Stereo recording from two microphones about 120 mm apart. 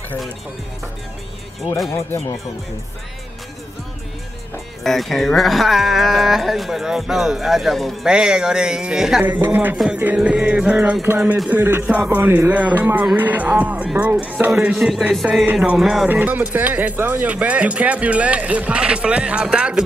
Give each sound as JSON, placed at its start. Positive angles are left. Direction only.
{"t": 4.8, "sound": "speech", "side_deg": 0}
{"t": 9.2, "sound": "speech", "side_deg": -15}
{"t": 16.1, "sound": "speech", "side_deg": -15}